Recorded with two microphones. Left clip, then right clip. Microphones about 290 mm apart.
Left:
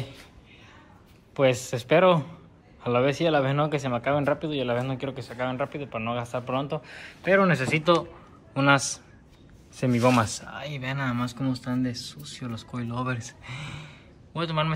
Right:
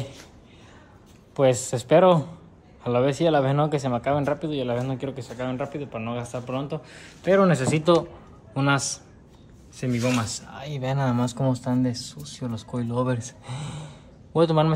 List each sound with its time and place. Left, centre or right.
1.3 s speech: centre
9.8 s speech: centre
10.7 s speech: centre